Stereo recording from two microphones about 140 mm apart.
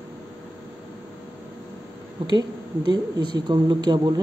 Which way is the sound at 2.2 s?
30° right (ahead or behind).